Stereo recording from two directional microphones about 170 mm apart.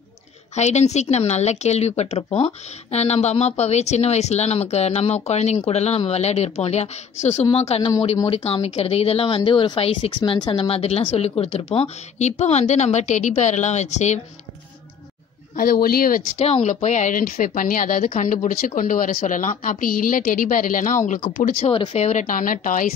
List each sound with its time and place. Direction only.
0.6 s a woman's voice: 40° left (ahead or behind)
15.5 s a man's voice: 55° left (ahead or behind)
16.3 s a woman's voice: 40° left (ahead or behind)
21.6 s a woman's voice: 35° left (ahead or behind); by 22.9 s 55° left (ahead or behind)